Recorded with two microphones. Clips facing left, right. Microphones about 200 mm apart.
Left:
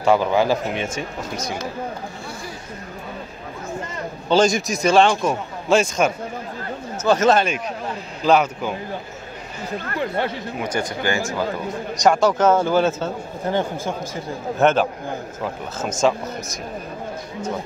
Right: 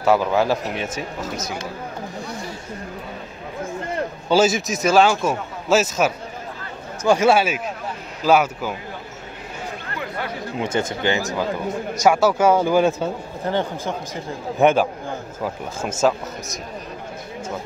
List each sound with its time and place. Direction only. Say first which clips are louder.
0.0 s a man's voice: left 1 dB; centre (ahead or behind)
4.3 s a man's voice: left 1 dB; 5° right (ahead or behind)
9.9 s speech: left 6 dB; 30° left (ahead or behind)
10.6 s speech: right 2 dB; 25° right (ahead or behind)
11.9 s a man's voice: even; 5° right (ahead or behind)
13.5 s speech: left 1 dB; 15° left (ahead or behind)
14.6 s a man's voice: right 1 dB; 10° right (ahead or behind)